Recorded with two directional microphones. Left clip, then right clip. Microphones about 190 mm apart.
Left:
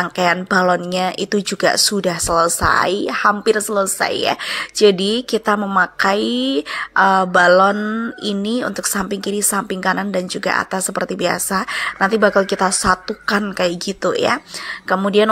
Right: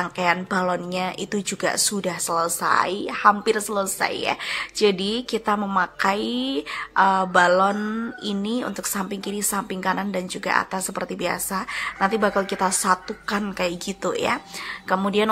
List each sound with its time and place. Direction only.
0.0 s speech: 35° left (ahead or behind)